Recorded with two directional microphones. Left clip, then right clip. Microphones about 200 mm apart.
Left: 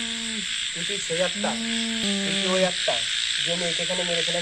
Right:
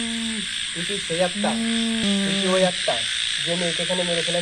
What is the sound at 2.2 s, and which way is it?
Sizzle, 15° left (ahead or behind).